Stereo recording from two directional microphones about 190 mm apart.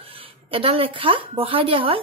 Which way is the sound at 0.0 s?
30° right (ahead or behind).